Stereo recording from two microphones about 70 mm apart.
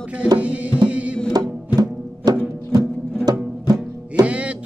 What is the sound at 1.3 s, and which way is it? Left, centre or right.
Music, right.